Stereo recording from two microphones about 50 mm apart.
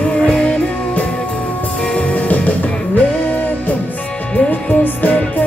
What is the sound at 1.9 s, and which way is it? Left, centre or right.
Music, left.